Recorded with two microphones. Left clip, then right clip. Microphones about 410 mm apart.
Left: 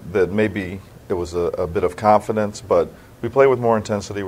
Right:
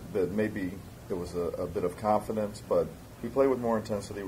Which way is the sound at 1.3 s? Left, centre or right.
Left.